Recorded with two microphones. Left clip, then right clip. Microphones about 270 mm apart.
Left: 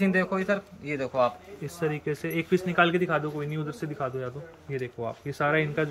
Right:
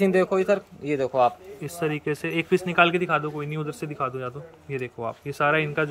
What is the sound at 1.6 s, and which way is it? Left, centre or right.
A man's voice, centre.